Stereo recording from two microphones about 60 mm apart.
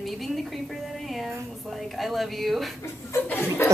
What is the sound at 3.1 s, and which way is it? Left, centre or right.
Speech, left.